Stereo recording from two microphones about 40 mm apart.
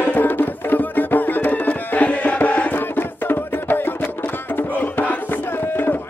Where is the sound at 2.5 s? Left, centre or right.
Left.